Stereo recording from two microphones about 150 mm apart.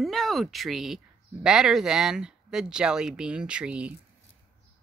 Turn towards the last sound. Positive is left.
turn(degrees=-10)  # may be behind; listen again after turning